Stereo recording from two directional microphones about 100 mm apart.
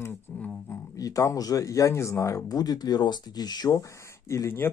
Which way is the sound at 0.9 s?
35° left (ahead or behind).